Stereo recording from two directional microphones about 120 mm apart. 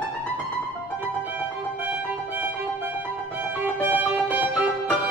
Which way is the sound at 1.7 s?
15° right (ahead or behind).